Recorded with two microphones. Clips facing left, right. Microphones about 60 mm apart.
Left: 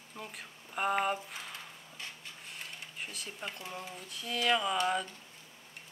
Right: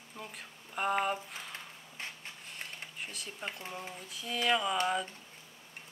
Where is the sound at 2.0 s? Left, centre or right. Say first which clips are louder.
Right 3 dB; right.